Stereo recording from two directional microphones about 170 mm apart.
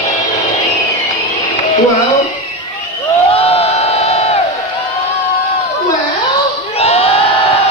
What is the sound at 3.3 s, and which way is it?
Crowd, 35° left (ahead or behind).